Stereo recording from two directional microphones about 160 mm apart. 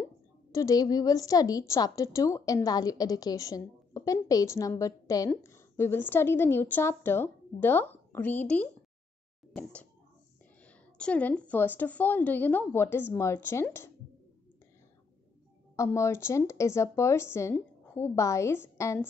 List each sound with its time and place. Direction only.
0.5 s a woman's voice: 20° left (ahead or behind)
15.7 s a woman's voice: 20° left (ahead or behind)